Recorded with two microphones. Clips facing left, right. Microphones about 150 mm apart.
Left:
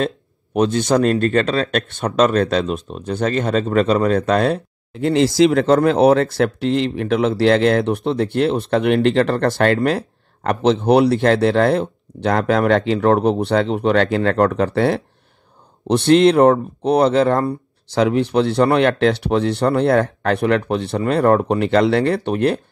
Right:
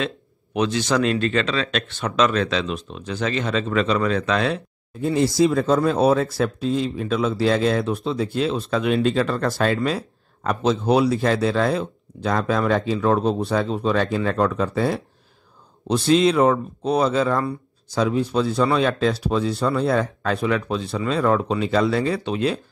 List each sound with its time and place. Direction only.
0.0 s speech: 45° left (ahead or behind)
4.9 s speech: 80° left; by 17.6 s 55° left (ahead or behind)
17.8 s speech: 75° left (ahead or behind); by 22.6 s 60° left (ahead or behind)